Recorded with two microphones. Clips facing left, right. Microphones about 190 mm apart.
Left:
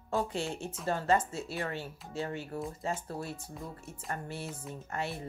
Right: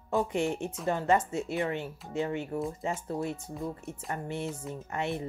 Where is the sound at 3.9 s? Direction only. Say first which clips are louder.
Right 4 dB; 20° right (ahead or behind).